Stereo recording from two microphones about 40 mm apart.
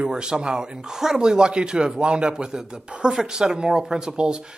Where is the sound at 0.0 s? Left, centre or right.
Right.